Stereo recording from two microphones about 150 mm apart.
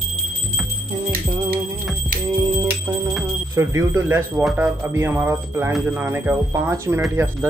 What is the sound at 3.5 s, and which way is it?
Speech, 20° right (ahead or behind).